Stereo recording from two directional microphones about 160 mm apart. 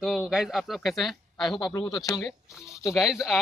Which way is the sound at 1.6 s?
25° left (ahead or behind).